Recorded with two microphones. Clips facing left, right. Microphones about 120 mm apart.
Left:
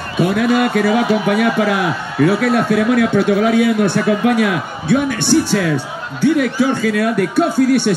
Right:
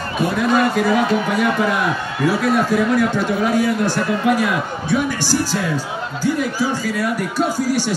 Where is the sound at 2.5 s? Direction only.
65° left (ahead or behind).